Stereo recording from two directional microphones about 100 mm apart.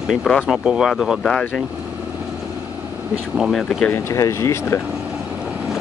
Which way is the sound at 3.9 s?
30° left (ahead or behind).